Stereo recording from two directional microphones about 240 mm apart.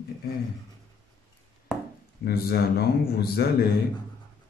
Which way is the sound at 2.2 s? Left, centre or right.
Left.